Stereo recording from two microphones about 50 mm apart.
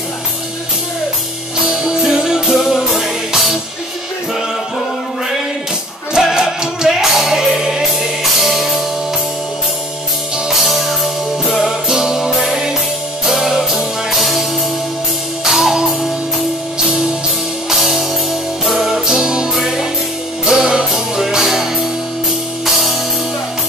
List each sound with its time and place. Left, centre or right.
1.7 s music: centre
6.1 s music: centre
10.6 s music: centre
15.4 s music: centre
17.6 s music: centre